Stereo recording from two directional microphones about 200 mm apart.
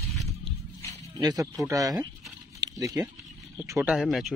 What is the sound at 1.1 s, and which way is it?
Speech, 15° right (ahead or behind).